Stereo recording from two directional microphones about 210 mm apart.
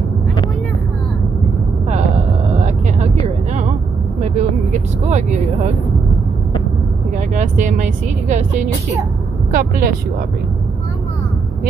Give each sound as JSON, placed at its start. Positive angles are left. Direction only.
{"t": 4.2, "sound": "vehicle", "side_deg": -35}
{"t": 7.2, "sound": "speech", "side_deg": -35}